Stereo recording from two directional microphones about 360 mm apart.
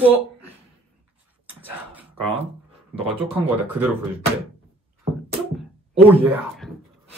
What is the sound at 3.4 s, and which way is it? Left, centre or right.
Speech, centre.